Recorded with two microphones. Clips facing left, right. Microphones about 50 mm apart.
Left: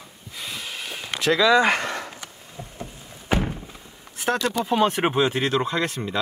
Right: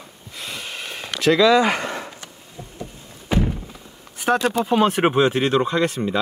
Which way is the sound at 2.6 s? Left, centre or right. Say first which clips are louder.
Even; left.